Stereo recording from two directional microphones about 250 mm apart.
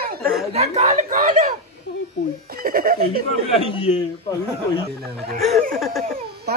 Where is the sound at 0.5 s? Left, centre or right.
Right.